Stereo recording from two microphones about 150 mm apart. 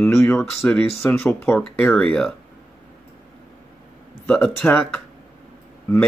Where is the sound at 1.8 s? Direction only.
Centre (ahead or behind).